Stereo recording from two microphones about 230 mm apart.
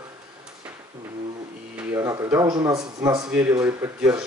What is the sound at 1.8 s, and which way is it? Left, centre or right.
Speech, centre.